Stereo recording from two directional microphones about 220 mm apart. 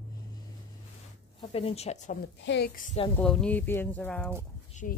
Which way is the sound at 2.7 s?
35° left (ahead or behind).